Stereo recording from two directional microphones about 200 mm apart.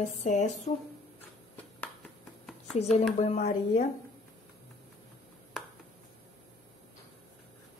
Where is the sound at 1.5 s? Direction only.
5° left (ahead or behind).